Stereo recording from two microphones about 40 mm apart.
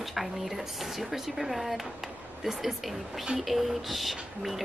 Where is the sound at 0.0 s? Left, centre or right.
Centre.